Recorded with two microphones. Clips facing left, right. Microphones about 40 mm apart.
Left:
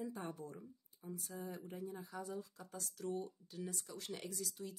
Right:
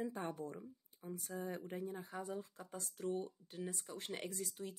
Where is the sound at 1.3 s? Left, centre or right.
Right.